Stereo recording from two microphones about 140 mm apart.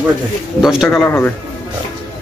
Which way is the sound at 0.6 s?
Centre (ahead or behind).